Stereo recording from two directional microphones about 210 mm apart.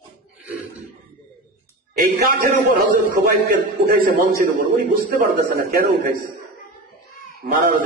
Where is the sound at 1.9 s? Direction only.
40° right (ahead or behind).